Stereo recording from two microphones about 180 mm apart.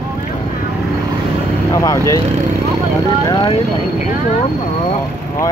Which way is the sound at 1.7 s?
20° left (ahead or behind).